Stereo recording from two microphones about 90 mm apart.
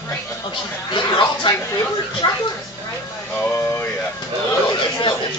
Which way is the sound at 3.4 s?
25° left (ahead or behind).